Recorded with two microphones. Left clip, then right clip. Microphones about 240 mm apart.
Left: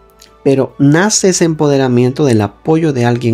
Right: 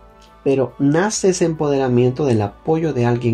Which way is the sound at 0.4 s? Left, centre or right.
Left.